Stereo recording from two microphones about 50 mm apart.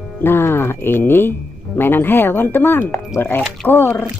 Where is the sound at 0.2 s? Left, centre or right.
Left.